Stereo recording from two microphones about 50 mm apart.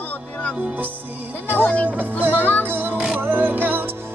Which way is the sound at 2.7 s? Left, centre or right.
Right.